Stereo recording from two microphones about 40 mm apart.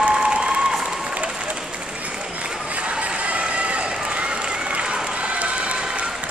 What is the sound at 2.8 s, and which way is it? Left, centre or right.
Run, right.